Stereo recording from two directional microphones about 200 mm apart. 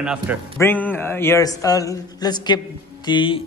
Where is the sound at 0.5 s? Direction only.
10° left (ahead or behind).